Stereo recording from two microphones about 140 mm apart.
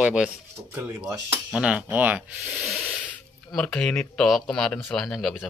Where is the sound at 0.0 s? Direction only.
5° right (ahead or behind).